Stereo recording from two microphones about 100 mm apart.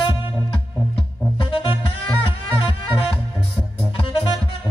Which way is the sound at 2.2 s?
65° left (ahead or behind).